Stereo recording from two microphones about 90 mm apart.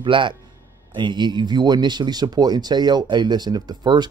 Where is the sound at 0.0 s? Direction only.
65° right (ahead or behind).